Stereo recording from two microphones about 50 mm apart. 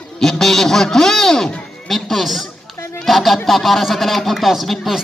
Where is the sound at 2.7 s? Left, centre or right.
Left.